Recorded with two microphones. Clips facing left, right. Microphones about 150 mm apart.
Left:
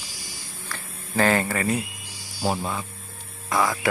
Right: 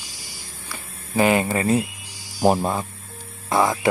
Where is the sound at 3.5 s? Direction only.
25° right (ahead or behind).